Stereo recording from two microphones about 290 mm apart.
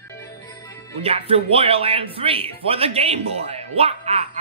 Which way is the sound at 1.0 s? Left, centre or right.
Centre.